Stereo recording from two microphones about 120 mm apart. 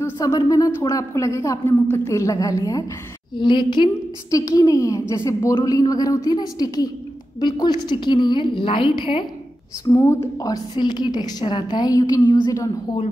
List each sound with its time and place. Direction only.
0.2 s a woman's voice: 30° left (ahead or behind)
3.3 s a woman's voice: 40° left (ahead or behind)
9.8 s a woman's voice: 25° left (ahead or behind)